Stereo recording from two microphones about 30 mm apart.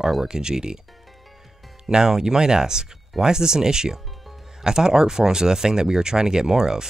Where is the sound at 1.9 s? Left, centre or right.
Right.